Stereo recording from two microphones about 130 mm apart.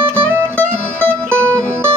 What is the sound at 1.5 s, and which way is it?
Music, 20° right (ahead or behind).